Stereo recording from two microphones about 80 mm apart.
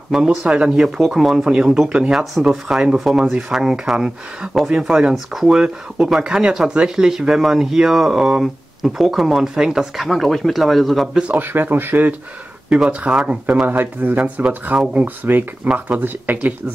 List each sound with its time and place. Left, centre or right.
0.1 s speech: centre
11.1 s speech: centre
11.4 s speech: right
12.6 s speech: centre